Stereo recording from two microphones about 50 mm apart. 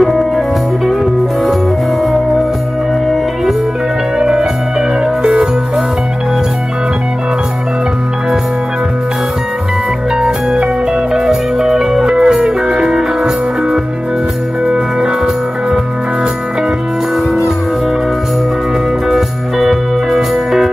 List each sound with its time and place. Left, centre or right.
0.0 s music: centre
4.2 s music: centre
10.2 s music: centre
19.0 s music: centre